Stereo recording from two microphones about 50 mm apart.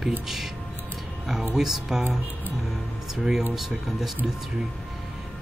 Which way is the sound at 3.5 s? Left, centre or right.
Centre.